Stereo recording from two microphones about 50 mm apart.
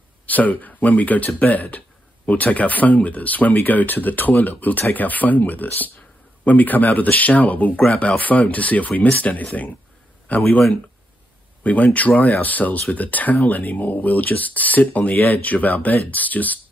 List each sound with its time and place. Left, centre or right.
0.3 s speech: left
11.6 s speech: left